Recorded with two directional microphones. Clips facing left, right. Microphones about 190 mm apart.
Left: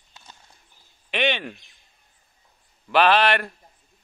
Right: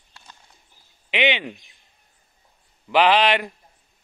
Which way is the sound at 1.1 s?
15° right (ahead or behind).